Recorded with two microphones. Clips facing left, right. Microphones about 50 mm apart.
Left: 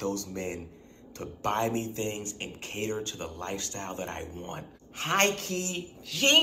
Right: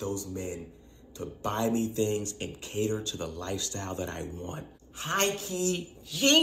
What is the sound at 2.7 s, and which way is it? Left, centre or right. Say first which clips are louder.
Speech: right 3 dB; left.